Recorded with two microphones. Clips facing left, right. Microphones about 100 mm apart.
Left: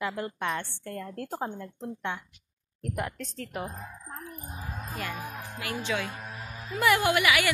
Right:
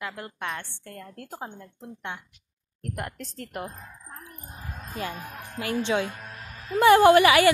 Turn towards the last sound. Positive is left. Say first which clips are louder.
# right 9 dB
turn(degrees=-35)  # may be behind; listen again after turning